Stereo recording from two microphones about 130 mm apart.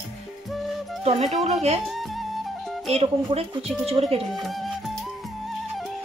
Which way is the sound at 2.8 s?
50° right (ahead or behind).